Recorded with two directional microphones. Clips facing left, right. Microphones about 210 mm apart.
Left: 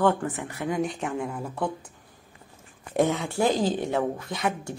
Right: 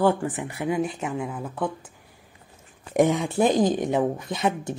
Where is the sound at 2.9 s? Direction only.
15° right (ahead or behind).